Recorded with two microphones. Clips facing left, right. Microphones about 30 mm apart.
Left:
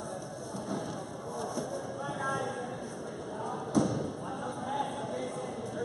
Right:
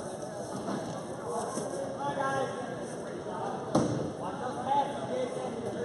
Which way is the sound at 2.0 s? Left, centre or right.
Centre.